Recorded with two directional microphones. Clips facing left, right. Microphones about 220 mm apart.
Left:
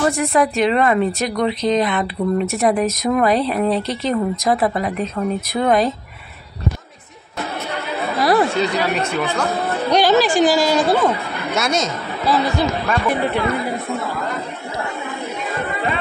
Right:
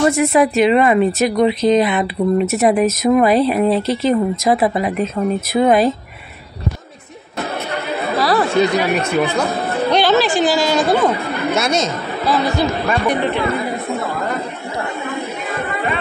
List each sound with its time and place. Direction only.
0.0 s speech: 5° right (ahead or behind)
8.2 s chatter: 20° left (ahead or behind)
8.5 s speech: 15° right (ahead or behind)
9.8 s a woman's voice: 10° left (ahead or behind)